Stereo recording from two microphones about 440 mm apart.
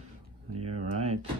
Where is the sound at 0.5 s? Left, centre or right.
Right.